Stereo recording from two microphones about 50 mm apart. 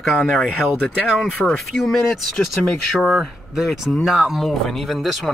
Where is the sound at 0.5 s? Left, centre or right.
Centre.